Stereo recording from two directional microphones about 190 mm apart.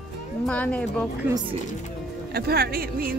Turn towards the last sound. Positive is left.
turn(degrees=-50)  # may be behind; listen again after turning